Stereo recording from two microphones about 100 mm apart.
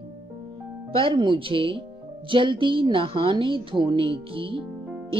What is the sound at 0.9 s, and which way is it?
Speech, 55° right (ahead or behind).